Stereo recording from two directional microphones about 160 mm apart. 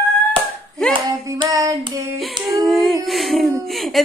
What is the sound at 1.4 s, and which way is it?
Child singing, 20° right (ahead or behind).